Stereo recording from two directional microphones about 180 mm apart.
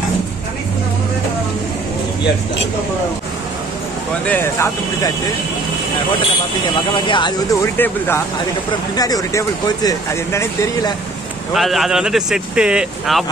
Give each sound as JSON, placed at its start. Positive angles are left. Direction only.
{"t": 4.3, "sound": "speech", "side_deg": 15}
{"t": 7.1, "sound": "speech", "side_deg": 25}
{"t": 7.7, "sound": "speech", "side_deg": 10}
{"t": 11.5, "sound": "speech", "side_deg": 0}